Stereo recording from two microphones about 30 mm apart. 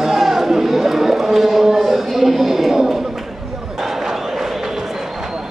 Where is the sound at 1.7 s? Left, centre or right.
Centre.